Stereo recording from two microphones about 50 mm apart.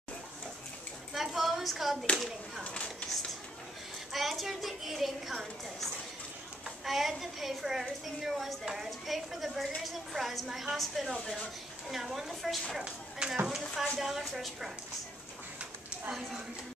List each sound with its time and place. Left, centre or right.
1.1 s clapping: centre
2.6 s speech: left
4.1 s a woman's voice: centre
16.1 s speech: centre